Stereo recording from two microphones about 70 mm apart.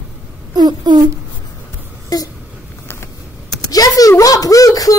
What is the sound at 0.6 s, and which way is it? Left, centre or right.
Speech, right.